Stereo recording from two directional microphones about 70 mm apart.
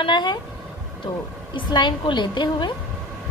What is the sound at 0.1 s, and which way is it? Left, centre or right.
Speech, left.